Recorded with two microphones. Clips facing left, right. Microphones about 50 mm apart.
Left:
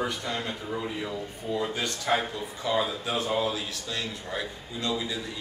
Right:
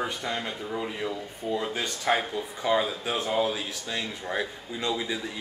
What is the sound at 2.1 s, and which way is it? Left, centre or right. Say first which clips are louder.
Speech: right 2 dB; right.